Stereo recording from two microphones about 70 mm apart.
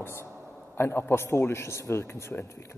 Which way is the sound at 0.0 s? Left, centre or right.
Left.